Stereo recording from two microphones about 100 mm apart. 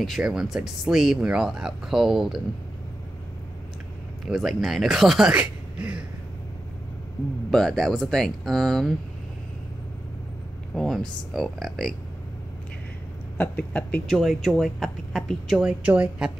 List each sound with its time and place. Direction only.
0.0 s speech: centre (ahead or behind)
4.3 s speech: centre (ahead or behind)
5.4 s a sound: 15° right (ahead or behind)
7.5 s speech: 5° left (ahead or behind)
10.7 s speech: 5° left (ahead or behind)
13.4 s speech: 15° left (ahead or behind)
14.1 s speech: centre (ahead or behind)
15.6 s a woman's voice: 15° right (ahead or behind)